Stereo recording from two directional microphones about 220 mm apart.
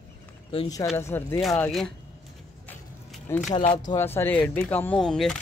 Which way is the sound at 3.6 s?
35° left (ahead or behind).